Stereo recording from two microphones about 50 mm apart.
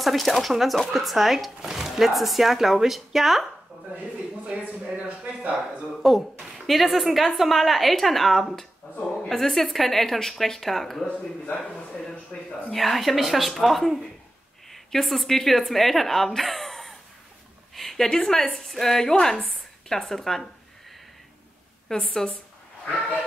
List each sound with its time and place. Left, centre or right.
0.0 s speech: centre
4.5 s speech: right
5.6 s speech: centre
11.1 s speech: left
11.6 s a sound: centre
12.6 s a woman's voice: centre
21.8 s a woman's voice: centre